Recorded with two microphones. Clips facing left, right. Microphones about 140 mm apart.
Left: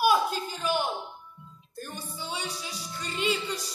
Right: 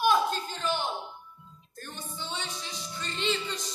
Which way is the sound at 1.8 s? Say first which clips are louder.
Left 2 dB; 10° left (ahead or behind).